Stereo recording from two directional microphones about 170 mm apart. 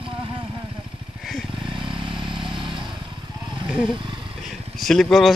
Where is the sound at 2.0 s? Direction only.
30° right (ahead or behind).